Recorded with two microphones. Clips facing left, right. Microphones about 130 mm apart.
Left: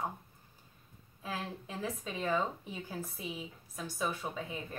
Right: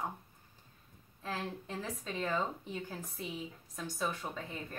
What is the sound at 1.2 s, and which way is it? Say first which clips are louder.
Speech: even; 5° left (ahead or behind).